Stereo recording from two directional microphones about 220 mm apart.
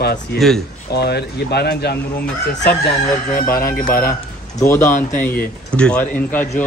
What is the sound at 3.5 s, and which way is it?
Speech, 40° left (ahead or behind).